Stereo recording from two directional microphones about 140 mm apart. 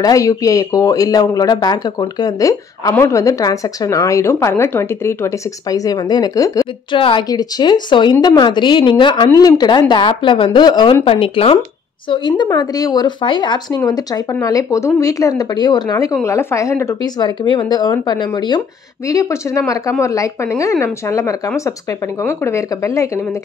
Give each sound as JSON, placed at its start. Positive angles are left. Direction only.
{"t": 0.0, "sound": "speech", "side_deg": 25}
{"t": 6.9, "sound": "speech", "side_deg": 35}
{"t": 11.1, "sound": "speech", "side_deg": 40}